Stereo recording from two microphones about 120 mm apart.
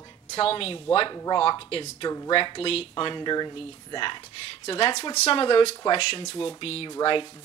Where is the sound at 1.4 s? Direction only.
50° left (ahead or behind).